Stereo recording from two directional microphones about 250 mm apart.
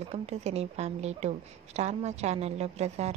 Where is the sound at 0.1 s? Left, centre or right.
Right.